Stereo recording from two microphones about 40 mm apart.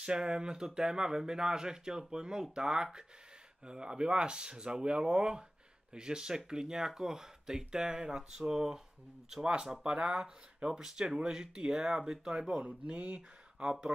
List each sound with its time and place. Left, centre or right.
0.0 s speech: right
8.2 s speech: centre
12.6 s speech: right
13.6 s speech: centre